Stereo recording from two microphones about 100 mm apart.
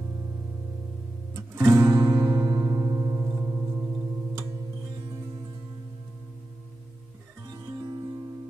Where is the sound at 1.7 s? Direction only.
35° right (ahead or behind).